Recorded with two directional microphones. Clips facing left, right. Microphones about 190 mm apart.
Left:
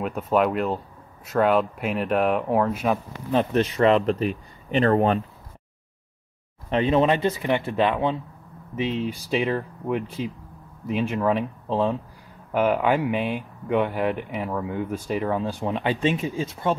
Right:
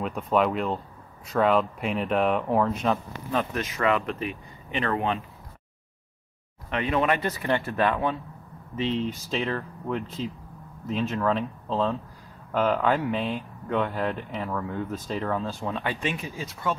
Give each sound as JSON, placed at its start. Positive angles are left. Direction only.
{"t": 0.0, "sound": "speech", "side_deg": 5}
{"t": 3.3, "sound": "speech", "side_deg": 30}
{"t": 6.7, "sound": "speech", "side_deg": 30}
{"t": 8.9, "sound": "speech", "side_deg": 10}